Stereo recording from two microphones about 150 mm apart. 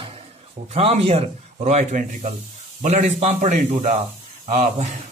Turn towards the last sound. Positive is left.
turn(degrees=-50)  # may be behind; listen again after turning